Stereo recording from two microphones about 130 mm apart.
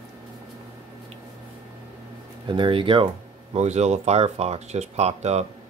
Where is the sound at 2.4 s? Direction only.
40° right (ahead or behind).